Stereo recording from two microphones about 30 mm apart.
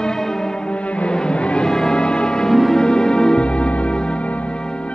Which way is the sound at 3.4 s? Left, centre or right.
Left.